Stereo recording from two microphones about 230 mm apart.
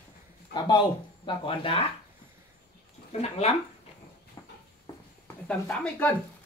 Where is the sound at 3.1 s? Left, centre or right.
Left.